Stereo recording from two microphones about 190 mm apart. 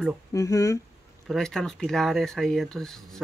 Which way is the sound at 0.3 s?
20° left (ahead or behind).